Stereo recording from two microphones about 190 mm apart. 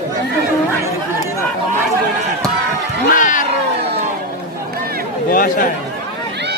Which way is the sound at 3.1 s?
45° left (ahead or behind).